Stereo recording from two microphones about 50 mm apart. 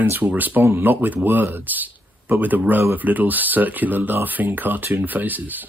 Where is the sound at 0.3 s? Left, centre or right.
Right.